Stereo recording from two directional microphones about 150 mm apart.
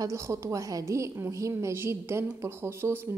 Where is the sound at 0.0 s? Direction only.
20° right (ahead or behind).